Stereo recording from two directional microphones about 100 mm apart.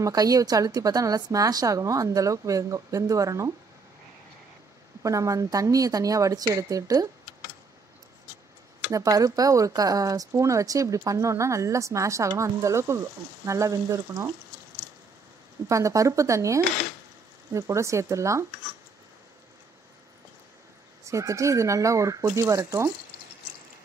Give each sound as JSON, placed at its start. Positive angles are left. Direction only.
{"t": 0.0, "sound": "speech", "side_deg": -40}
{"t": 5.0, "sound": "speech", "side_deg": -35}
{"t": 8.9, "sound": "speech", "side_deg": -35}
{"t": 15.7, "sound": "speech", "side_deg": -30}
{"t": 21.0, "sound": "speech", "side_deg": -30}